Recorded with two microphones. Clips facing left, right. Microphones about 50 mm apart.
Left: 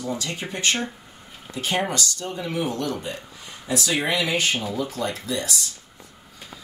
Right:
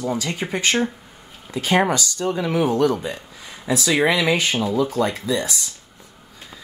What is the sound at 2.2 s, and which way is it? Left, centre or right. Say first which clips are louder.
Speech: right 9 dB; right.